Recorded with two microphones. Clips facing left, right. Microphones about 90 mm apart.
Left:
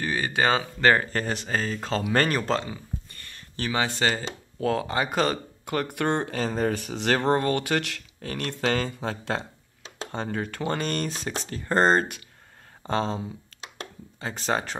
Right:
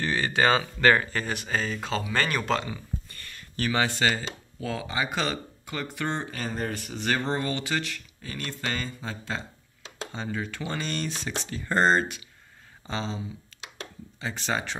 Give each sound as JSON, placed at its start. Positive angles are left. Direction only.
{"t": 0.0, "sound": "speech", "side_deg": 15}
{"t": 1.1, "sound": "speech", "side_deg": 40}
{"t": 2.0, "sound": "speech", "side_deg": 50}
{"t": 2.3, "sound": "a sound", "side_deg": 30}
{"t": 4.0, "sound": "speech", "side_deg": 30}
{"t": 4.6, "sound": "speech", "side_deg": 50}
{"t": 5.9, "sound": "speech", "side_deg": 60}
{"t": 10.1, "sound": "speech", "side_deg": 55}
{"t": 13.5, "sound": "a sound", "side_deg": 50}
{"t": 14.2, "sound": "speech", "side_deg": 45}